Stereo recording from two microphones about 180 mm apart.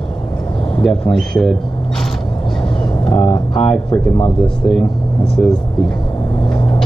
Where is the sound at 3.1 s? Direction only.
25° left (ahead or behind).